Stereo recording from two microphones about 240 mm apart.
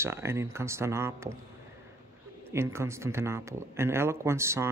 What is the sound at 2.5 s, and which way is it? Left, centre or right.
A man's voice, centre.